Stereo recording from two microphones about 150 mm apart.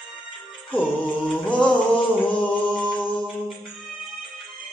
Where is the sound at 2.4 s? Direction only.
5° left (ahead or behind).